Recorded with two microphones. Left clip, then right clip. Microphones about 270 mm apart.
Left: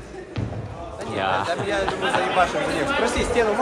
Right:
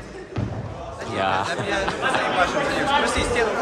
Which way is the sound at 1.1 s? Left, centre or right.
Centre.